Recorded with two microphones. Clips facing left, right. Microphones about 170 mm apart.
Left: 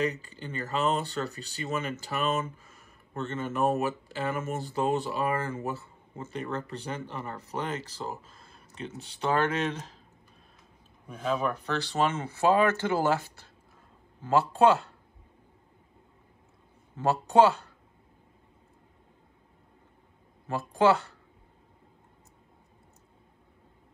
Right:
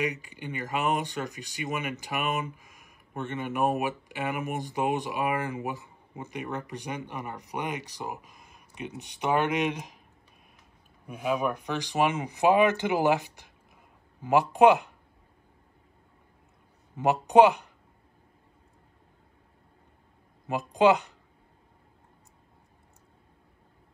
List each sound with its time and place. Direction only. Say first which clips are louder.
0.0 s speech: left 1 dB; 15° right (ahead or behind)
11.1 s speech: right 1 dB; 10° right (ahead or behind)
16.9 s speech: right 2 dB; 15° right (ahead or behind)
20.4 s speech: right 2 dB; 15° right (ahead or behind)